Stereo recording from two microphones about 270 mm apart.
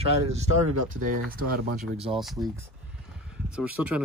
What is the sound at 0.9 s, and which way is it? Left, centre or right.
Speech, right.